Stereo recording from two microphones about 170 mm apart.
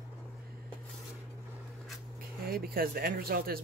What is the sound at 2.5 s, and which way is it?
Speech, 60° right (ahead or behind).